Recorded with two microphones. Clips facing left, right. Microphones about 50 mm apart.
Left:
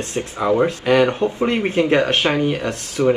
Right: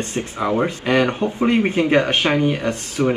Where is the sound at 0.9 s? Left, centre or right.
Right.